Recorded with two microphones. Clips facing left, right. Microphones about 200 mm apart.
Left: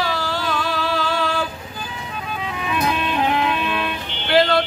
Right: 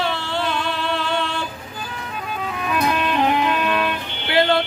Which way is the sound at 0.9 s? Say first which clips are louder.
Left 1 dB; 25° right (ahead or behind).